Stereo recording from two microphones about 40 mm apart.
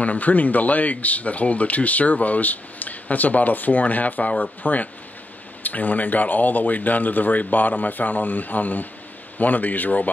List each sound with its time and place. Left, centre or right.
0.0 s speech: left